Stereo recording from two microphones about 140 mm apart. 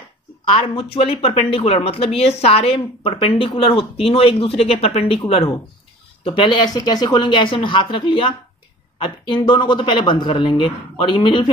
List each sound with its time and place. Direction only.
0.6 s a man's voice: 40° left (ahead or behind)